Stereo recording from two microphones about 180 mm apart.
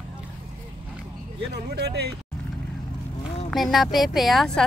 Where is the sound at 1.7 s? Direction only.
65° right (ahead or behind).